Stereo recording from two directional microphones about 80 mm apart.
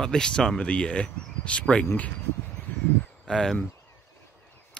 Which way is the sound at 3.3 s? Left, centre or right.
Centre.